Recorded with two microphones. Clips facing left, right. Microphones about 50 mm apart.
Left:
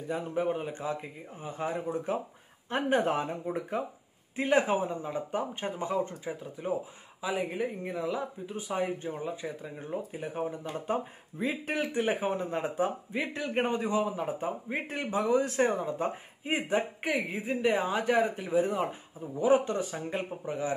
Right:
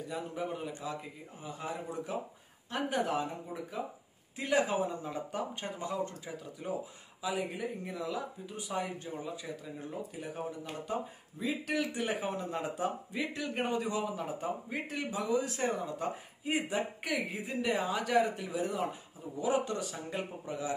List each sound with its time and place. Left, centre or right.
0.1 s speech: left
5.0 s a man's voice: left
14.9 s speech: left
15.8 s a man's voice: left